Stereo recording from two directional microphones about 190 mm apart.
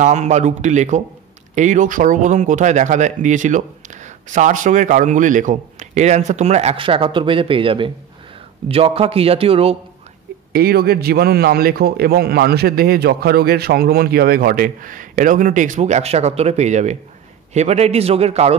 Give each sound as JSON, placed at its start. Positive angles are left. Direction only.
{"t": 0.0, "sound": "speech", "side_deg": -40}
{"t": 10.5, "sound": "a man's voice", "side_deg": -55}